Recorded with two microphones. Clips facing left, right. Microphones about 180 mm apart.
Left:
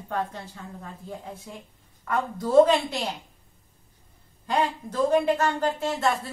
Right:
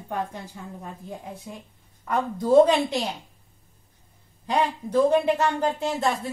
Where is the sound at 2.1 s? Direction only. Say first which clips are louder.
Right 4 dB; 15° right (ahead or behind).